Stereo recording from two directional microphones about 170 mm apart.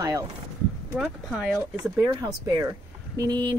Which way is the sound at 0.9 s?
5° right (ahead or behind).